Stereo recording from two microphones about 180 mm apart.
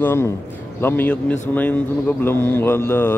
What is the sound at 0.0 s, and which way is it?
Mantra, 15° left (ahead or behind).